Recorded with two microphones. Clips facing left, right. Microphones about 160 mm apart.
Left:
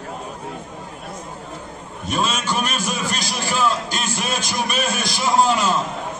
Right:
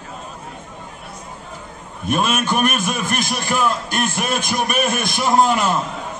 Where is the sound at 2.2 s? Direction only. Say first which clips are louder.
Right 5 dB; 55° right (ahead or behind).